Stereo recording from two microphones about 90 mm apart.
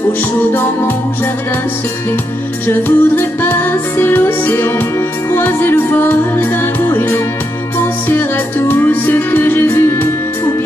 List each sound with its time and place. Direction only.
2.7 s music: 25° left (ahead or behind)